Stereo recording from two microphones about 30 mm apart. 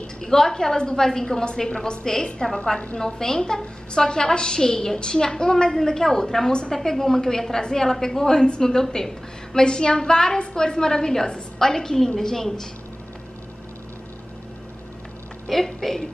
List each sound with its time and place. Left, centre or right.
0.2 s a woman's voice: centre
15.4 s a woman's voice: centre